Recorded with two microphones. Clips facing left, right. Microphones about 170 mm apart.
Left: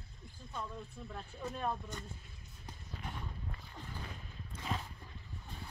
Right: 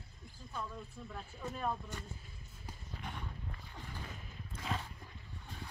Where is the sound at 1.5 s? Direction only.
5° right (ahead or behind).